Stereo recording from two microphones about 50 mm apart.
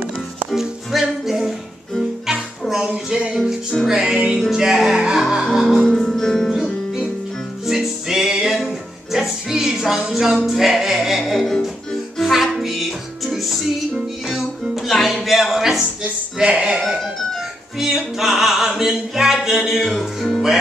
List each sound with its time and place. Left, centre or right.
0.6 s music: centre
5.9 s music: centre
6.5 s music: centre
16.4 s a sound: centre
17.7 s music: centre
19.8 s music: centre